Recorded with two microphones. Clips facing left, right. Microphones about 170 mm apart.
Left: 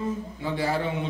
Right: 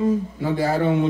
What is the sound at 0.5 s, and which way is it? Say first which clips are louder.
Speech: right 7 dB; 45° right (ahead or behind).